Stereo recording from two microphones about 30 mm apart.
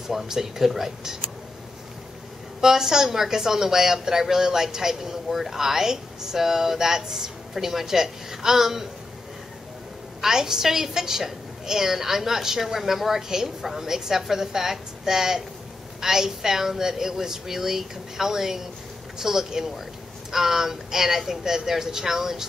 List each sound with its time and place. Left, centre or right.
0.0 s a woman's voice: centre
2.6 s a woman's voice: centre
10.2 s a woman's voice: centre